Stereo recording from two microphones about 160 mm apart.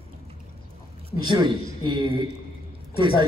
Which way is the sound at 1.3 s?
30° right (ahead or behind).